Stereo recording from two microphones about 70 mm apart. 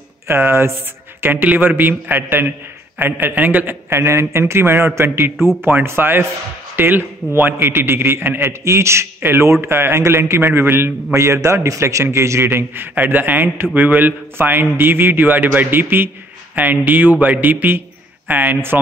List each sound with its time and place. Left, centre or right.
0.3 s a man's voice: right
4.0 s a man's voice: right
5.6 s a man's voice: right